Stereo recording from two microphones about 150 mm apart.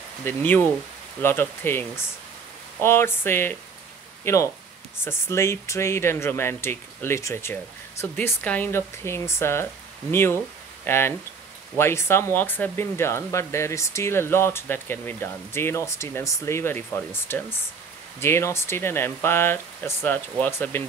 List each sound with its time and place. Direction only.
0.2 s speech: 15° left (ahead or behind)